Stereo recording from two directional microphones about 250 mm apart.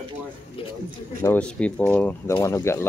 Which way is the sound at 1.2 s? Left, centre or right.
Centre.